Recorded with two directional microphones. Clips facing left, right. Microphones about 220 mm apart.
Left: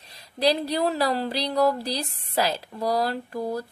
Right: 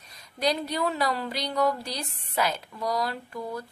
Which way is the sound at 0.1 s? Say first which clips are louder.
Left 4 dB; 35° left (ahead or behind).